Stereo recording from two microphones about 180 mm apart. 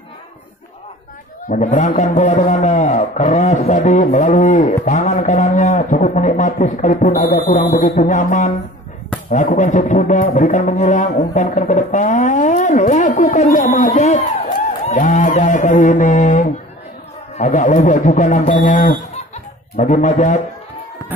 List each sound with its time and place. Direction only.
1.5 s a man's voice: 40° left (ahead or behind)
3.5 s music: 45° left (ahead or behind)
17.4 s speech: 45° left (ahead or behind)